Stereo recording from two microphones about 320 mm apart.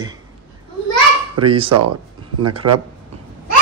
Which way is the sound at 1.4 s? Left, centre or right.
Centre.